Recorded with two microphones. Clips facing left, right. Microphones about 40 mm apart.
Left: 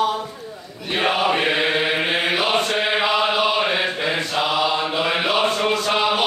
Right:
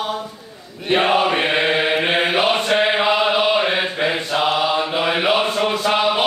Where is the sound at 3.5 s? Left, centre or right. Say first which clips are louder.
Right 2 dB; centre.